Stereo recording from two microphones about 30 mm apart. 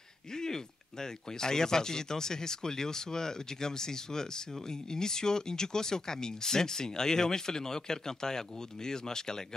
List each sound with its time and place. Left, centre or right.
1.4 s speech: left